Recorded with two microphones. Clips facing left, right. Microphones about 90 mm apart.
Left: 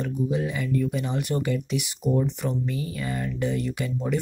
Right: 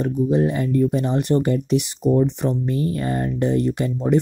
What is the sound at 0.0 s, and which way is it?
Speech, 40° right (ahead or behind).